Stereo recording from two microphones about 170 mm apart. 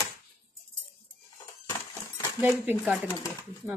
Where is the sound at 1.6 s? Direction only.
15° left (ahead or behind).